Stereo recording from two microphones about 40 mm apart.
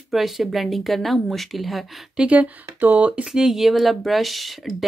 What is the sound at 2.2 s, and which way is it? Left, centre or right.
Speech, right.